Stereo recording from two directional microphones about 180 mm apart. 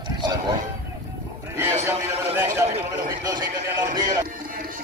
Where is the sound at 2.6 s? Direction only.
20° right (ahead or behind).